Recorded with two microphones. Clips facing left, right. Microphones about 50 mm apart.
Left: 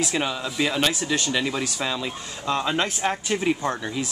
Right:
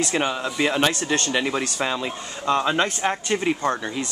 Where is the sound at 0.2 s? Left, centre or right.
Centre.